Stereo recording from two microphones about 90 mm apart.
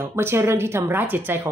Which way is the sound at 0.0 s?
25° right (ahead or behind).